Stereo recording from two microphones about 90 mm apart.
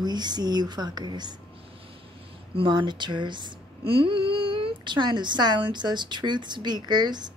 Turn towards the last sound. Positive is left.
turn(degrees=-55)  # may be behind; listen again after turning